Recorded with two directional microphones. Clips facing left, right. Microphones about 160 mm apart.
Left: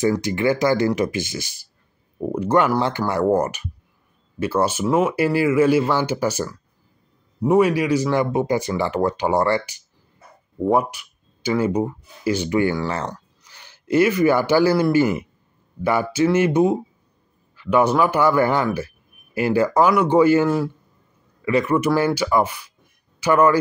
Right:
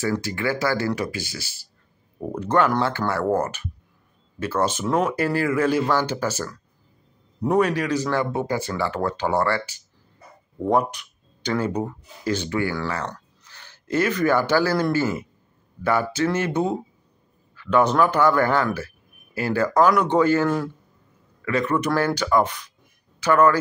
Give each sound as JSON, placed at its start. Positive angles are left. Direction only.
{"t": 0.0, "sound": "speech", "side_deg": 20}
{"t": 13.0, "sound": "speech", "side_deg": 10}